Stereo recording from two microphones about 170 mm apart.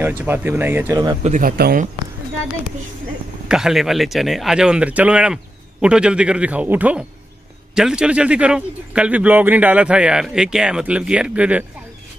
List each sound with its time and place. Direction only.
0.0 s a man's voice: 10° right (ahead or behind)
1.2 s speech: 45° right (ahead or behind)
1.6 s speech: 60° right (ahead or behind)
3.4 s a man's voice: 5° right (ahead or behind)